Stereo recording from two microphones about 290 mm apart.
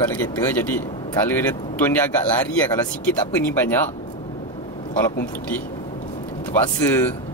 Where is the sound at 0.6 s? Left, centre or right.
Centre.